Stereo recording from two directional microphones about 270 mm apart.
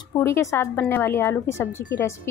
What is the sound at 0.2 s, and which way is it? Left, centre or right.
A woman's voice, centre.